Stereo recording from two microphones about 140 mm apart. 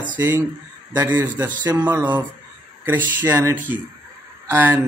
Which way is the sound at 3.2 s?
15° right (ahead or behind).